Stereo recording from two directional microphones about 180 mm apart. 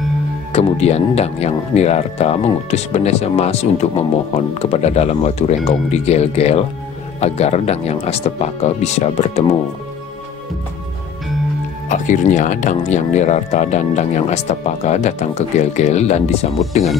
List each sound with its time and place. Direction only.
0.5 s speech: 35° left (ahead or behind)
11.9 s speech: 45° left (ahead or behind)